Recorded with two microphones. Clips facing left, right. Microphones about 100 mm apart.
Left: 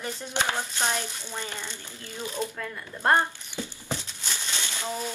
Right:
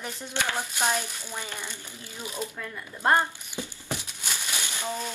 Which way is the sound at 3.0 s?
15° right (ahead or behind).